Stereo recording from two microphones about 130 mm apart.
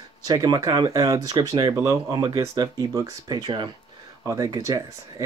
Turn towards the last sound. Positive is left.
turn(degrees=-30)  # may be behind; listen again after turning